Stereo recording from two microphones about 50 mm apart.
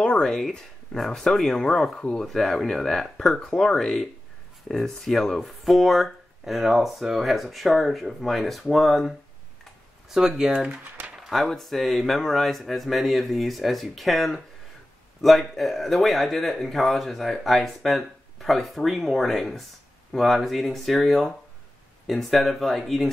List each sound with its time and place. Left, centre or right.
0.2 s speech: centre
10.0 s speech: centre
10.7 s a sound: right
11.2 s speech: centre